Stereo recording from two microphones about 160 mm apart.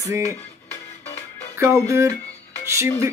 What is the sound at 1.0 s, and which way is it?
Music, 45° left (ahead or behind).